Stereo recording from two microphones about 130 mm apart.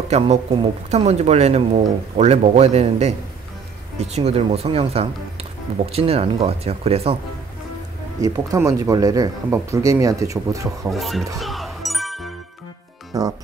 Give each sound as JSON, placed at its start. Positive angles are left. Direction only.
{"t": 0.1, "sound": "speech", "side_deg": -55}
{"t": 8.2, "sound": "speech", "side_deg": -25}
{"t": 10.9, "sound": "speech", "side_deg": 0}
{"t": 11.3, "sound": "ding", "side_deg": 0}
{"t": 13.1, "sound": "speech", "side_deg": -30}